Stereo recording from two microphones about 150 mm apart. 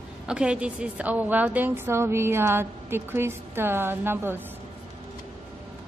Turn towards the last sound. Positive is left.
turn(degrees=-15)  # may be behind; listen again after turning